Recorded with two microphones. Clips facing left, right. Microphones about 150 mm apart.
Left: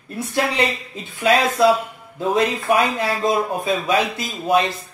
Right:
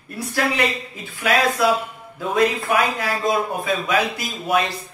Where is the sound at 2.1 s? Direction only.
25° left (ahead or behind).